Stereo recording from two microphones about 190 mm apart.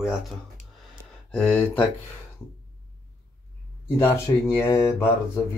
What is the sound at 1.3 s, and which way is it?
Speech, 5° left (ahead or behind).